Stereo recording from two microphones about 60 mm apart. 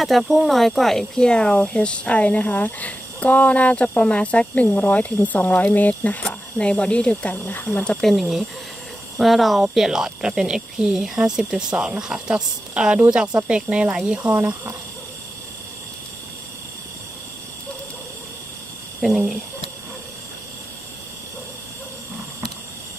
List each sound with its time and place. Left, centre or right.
0.0 s speech: centre; by 7.7 s left
8.0 s speech: centre; by 14.3 s right
18.9 s speech: centre